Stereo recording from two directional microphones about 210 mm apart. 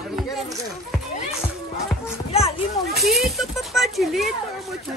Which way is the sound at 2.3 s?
30° left (ahead or behind).